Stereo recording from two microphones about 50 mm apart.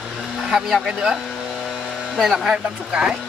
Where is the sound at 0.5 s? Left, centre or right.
Centre.